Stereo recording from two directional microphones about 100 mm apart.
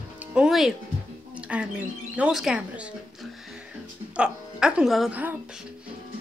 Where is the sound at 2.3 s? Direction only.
5° right (ahead or behind).